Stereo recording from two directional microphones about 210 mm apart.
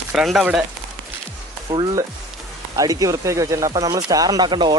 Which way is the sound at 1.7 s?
20° right (ahead or behind).